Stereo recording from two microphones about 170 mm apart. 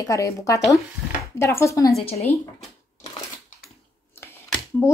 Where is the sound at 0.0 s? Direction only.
20° left (ahead or behind).